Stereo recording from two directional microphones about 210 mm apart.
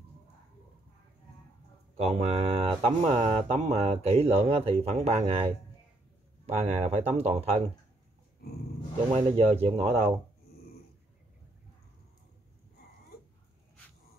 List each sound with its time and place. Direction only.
2.0 s speech: 30° right (ahead or behind)
8.4 s speech: 50° left (ahead or behind)
9.1 s speech: 30° right (ahead or behind)